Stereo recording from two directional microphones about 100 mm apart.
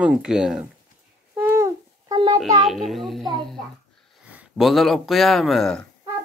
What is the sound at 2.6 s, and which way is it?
Speech, centre (ahead or behind).